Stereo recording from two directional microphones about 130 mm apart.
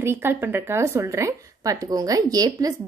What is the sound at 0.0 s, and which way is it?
Speech, 15° right (ahead or behind).